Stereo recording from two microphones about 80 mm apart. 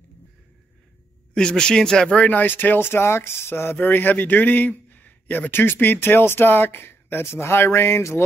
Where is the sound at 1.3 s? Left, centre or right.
Centre.